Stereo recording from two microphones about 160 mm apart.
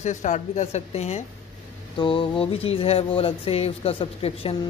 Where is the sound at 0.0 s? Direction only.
50° left (ahead or behind).